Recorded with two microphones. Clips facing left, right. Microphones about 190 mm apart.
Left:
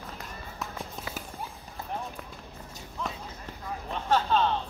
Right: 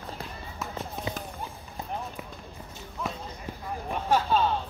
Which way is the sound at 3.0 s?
5° right (ahead or behind).